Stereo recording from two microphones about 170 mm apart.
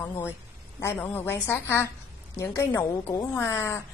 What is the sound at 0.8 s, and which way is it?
A woman's voice, 10° left (ahead or behind).